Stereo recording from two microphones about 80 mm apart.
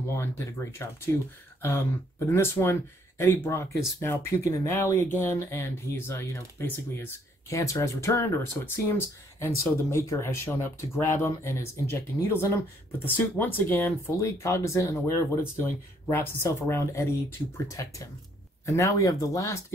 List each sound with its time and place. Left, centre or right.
0.2 s speech: left
7.4 s speech: left
13.0 s speech: left